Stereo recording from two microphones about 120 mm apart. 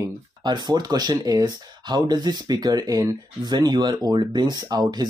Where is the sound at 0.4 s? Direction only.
40° right (ahead or behind).